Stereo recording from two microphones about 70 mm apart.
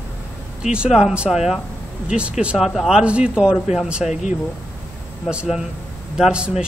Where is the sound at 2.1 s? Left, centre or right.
Centre.